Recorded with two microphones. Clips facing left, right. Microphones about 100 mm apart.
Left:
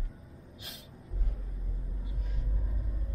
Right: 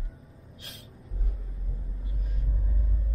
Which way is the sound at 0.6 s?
Centre (ahead or behind).